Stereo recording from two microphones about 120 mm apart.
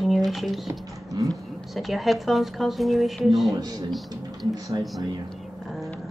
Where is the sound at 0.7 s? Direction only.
30° right (ahead or behind).